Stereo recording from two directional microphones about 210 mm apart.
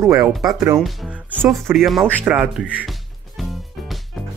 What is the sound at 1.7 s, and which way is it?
Speech, centre (ahead or behind).